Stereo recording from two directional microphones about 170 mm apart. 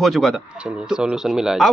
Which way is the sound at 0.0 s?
Centre (ahead or behind).